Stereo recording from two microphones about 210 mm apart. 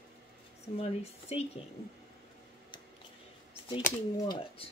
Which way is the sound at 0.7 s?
30° left (ahead or behind).